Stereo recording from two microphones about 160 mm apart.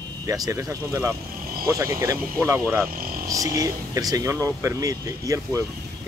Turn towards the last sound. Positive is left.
turn(degrees=-20)  # may be behind; listen again after turning